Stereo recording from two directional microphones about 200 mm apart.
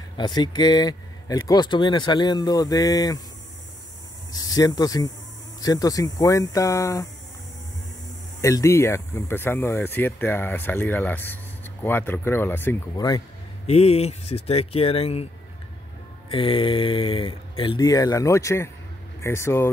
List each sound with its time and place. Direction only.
0.2 s speech: 20° left (ahead or behind)
4.3 s speech: 20° left (ahead or behind)
8.4 s speech: 15° left (ahead or behind)
13.7 s speech: 30° left (ahead or behind)
16.3 s speech: 25° left (ahead or behind)